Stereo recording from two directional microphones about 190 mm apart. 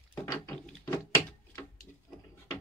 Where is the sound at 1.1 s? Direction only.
15° left (ahead or behind).